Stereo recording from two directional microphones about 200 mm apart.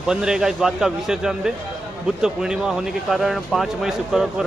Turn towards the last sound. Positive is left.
turn(degrees=0)  # may be behind; listen again after turning